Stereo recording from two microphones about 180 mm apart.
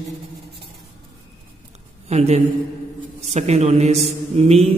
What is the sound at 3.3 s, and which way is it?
Mantra, 35° right (ahead or behind).